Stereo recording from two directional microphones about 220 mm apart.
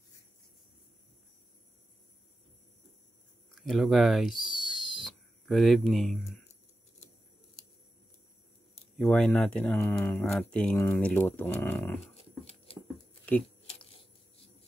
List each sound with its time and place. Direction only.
3.5 s speech: centre (ahead or behind)
8.9 s speech: 5° left (ahead or behind)
11.6 s dog: 10° left (ahead or behind)
12.0 s dog: 25° left (ahead or behind)
13.7 s a sound: 25° left (ahead or behind)